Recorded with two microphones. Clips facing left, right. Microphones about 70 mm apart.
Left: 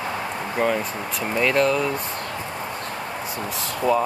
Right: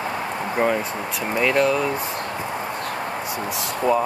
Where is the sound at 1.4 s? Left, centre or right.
Centre.